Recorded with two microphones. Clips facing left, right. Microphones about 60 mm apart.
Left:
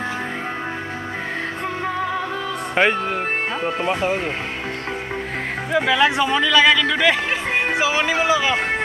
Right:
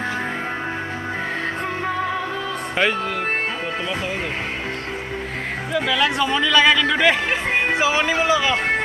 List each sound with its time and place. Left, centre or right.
2.7 s speech: left
3.6 s speech: left
5.7 s speech: centre
6.4 s speech: centre
7.5 s speech: centre